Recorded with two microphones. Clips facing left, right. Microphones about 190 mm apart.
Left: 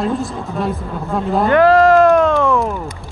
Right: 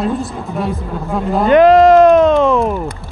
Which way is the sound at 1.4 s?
20° right (ahead or behind).